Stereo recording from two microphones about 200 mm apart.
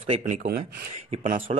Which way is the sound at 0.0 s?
30° right (ahead or behind).